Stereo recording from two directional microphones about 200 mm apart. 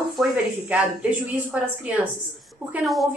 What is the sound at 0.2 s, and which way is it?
A woman's voice, 10° right (ahead or behind).